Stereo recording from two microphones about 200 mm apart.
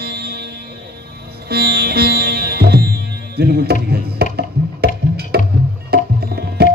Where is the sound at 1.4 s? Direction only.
50° right (ahead or behind).